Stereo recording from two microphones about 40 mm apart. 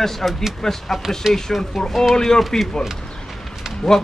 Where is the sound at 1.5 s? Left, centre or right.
Centre.